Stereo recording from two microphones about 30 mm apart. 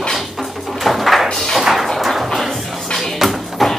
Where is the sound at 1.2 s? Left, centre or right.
Left.